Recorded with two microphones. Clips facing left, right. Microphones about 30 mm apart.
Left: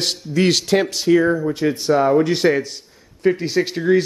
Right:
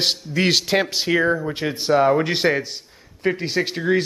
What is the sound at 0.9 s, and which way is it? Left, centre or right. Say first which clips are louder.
Speech: left 3 dB; right.